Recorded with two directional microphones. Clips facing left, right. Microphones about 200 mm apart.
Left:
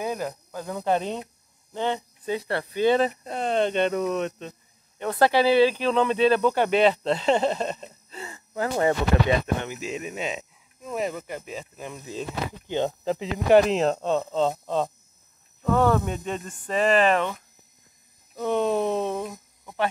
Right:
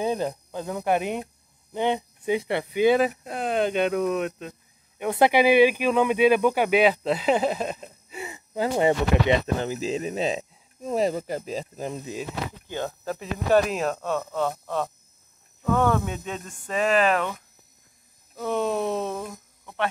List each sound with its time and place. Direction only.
0.0 s a sound: 25° right (ahead or behind)
0.7 s speech: 15° right (ahead or behind)
9.6 s speech: 35° right (ahead or behind)
12.6 s speech: 20° left (ahead or behind)
15.8 s speech: 5° left (ahead or behind)
19.6 s a sound: 5° left (ahead or behind)